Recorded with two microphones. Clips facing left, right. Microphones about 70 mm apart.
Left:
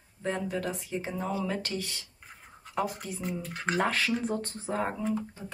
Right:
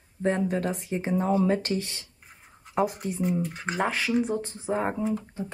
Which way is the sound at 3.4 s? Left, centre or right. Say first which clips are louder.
Right 1 dB; centre.